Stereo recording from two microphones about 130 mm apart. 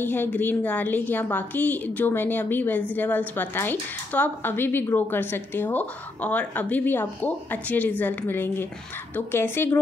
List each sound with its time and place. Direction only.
0.0 s a woman's voice: 15° left (ahead or behind)